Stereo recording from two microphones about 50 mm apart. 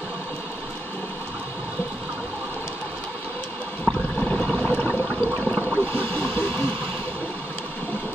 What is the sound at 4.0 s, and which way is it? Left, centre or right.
Toilet flush, left.